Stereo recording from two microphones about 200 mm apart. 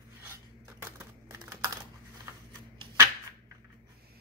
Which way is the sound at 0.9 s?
15° right (ahead or behind).